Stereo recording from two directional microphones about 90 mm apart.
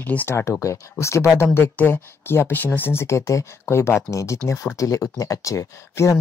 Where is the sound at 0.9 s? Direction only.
30° left (ahead or behind).